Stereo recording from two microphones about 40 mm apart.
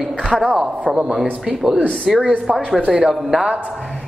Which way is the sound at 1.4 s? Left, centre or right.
Centre.